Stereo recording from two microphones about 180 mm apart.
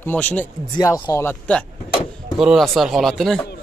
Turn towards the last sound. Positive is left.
turn(degrees=0)  # may be behind; listen again after turning